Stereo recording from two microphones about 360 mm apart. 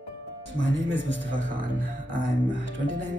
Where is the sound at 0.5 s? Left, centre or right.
Left.